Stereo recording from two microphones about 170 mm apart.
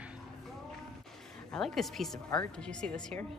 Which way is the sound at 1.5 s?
Centre (ahead or behind).